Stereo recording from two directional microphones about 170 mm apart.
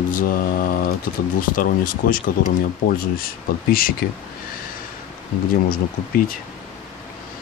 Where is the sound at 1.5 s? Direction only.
55° left (ahead or behind).